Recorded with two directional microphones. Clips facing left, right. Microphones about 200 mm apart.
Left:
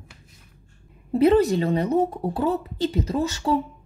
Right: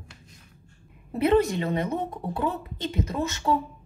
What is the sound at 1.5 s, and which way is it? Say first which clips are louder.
Speech: left 5 dB; 35° left (ahead or behind).